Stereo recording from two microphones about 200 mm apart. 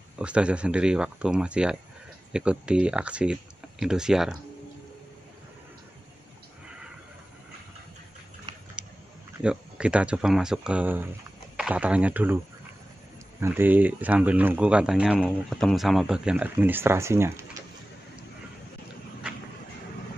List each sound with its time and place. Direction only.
0.2 s speech: 5° right (ahead or behind)
8.8 s a sound: 5° right (ahead or behind)
9.4 s speech: 5° right (ahead or behind)
13.4 s speech: 10° right (ahead or behind)